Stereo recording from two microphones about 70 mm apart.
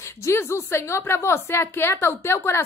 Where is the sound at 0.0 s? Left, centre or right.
Left.